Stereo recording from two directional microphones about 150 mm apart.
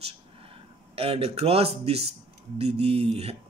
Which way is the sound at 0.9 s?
40° right (ahead or behind).